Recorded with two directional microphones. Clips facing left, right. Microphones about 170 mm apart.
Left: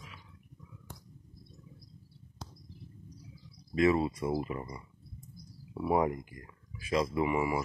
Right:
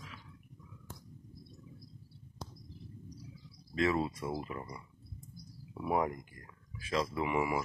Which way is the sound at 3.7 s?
10° left (ahead or behind).